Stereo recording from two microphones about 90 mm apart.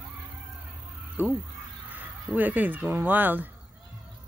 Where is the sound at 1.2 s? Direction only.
20° right (ahead or behind).